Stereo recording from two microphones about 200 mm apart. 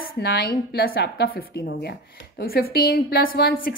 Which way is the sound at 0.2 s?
50° left (ahead or behind).